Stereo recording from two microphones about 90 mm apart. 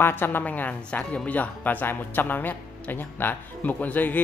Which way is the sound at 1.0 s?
5° left (ahead or behind).